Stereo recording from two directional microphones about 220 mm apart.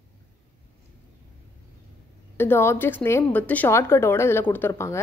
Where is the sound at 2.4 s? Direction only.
10° left (ahead or behind).